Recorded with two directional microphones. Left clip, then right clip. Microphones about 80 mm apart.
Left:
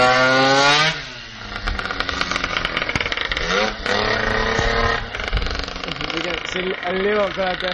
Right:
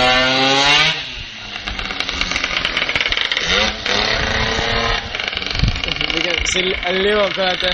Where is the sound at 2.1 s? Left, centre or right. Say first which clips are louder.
Right 4 dB; left.